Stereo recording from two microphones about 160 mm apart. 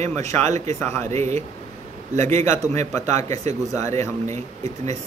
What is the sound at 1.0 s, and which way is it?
Speech, 45° right (ahead or behind).